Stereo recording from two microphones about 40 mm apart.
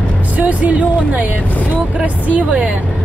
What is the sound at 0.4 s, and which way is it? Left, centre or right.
Speech, right.